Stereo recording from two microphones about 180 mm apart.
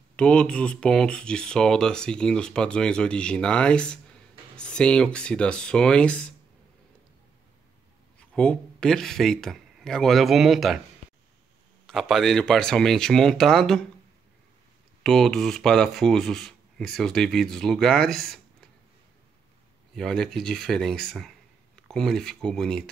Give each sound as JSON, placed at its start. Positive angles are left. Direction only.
{"t": 0.1, "sound": "speech", "side_deg": 5}
{"t": 8.2, "sound": "speech", "side_deg": 5}
{"t": 11.8, "sound": "speech", "side_deg": 0}
{"t": 15.0, "sound": "speech", "side_deg": 0}
{"t": 20.0, "sound": "speech", "side_deg": 5}